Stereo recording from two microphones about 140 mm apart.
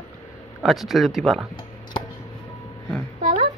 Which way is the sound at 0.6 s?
Centre (ahead or behind).